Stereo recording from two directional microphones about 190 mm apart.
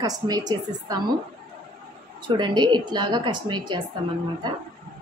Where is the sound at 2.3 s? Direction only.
25° right (ahead or behind).